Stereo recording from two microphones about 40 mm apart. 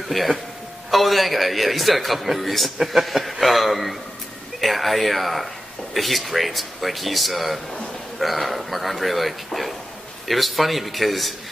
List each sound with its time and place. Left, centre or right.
0.1 s a man's voice: centre